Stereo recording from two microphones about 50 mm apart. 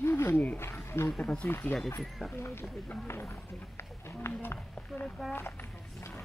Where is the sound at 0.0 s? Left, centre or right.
Left.